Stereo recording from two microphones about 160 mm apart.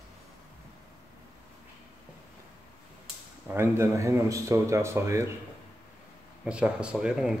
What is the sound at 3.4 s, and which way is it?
Speech, 15° right (ahead or behind).